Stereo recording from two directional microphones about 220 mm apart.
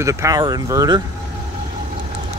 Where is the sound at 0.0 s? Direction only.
15° right (ahead or behind).